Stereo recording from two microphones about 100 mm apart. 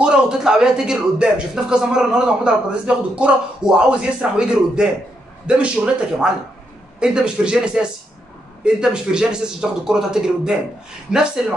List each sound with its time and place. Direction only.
0.0 s speech: 10° right (ahead or behind)